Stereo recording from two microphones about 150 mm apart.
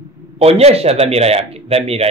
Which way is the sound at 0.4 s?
45° right (ahead or behind).